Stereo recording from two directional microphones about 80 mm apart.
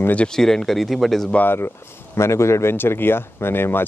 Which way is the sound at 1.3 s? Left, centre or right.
Left.